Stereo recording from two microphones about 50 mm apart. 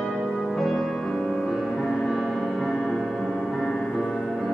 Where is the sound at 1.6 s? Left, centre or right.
Centre.